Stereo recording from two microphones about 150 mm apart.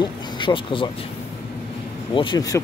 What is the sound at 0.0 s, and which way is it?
Speech, 35° left (ahead or behind).